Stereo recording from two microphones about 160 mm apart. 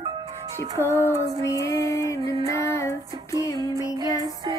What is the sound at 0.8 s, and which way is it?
Female singing, 15° left (ahead or behind).